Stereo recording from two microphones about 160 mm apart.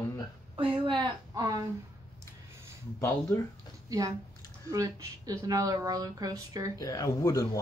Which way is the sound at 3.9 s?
20° right (ahead or behind).